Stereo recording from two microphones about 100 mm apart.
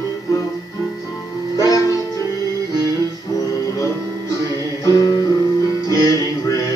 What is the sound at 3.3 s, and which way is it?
Music, 30° left (ahead or behind).